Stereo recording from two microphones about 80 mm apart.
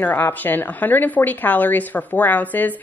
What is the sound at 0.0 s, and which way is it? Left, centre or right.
A woman's voice, left.